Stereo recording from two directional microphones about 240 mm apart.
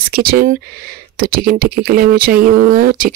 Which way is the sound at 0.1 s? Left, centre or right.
Right.